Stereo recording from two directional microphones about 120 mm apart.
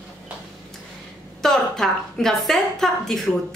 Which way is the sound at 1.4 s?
5° left (ahead or behind).